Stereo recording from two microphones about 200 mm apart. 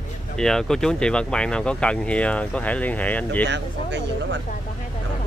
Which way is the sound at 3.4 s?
60° right (ahead or behind).